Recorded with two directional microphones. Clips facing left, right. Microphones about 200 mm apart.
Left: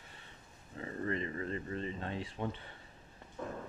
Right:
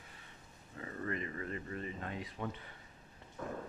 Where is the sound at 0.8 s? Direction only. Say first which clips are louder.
Left 3 dB; 30° left (ahead or behind).